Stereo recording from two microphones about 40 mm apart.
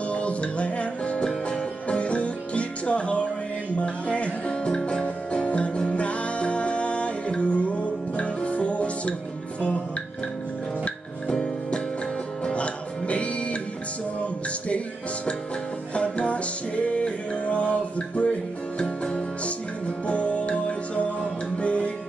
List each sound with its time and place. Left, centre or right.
0.1 s music: left
11.2 s music: centre
12.5 s music: left
15.9 s music: left
20.1 s music: left